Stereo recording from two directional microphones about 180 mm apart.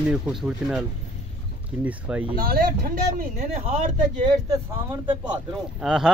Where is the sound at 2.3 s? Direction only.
55° right (ahead or behind).